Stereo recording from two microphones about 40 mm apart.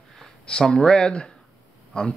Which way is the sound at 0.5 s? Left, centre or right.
Centre.